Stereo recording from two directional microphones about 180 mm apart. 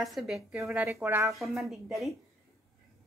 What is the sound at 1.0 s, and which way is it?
Speech, 15° right (ahead or behind).